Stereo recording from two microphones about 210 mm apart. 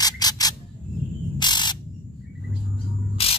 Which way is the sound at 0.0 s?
20° left (ahead or behind).